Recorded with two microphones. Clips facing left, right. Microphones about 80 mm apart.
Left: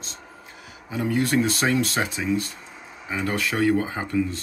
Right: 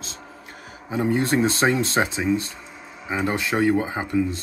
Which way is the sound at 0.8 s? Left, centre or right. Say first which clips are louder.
Right 2 dB; right.